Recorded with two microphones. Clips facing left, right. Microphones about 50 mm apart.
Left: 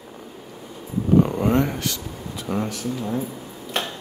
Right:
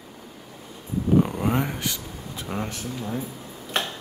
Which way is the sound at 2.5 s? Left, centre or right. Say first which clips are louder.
Left 5 dB; centre.